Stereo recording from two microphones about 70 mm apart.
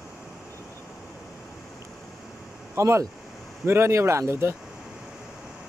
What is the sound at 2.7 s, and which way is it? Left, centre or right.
Speech, right.